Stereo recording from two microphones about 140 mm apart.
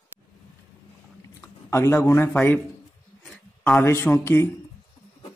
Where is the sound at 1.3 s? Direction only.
20° left (ahead or behind).